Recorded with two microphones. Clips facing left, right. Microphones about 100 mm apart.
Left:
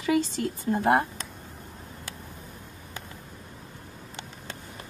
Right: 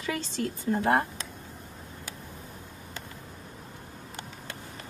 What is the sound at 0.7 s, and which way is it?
Speech, 15° left (ahead or behind).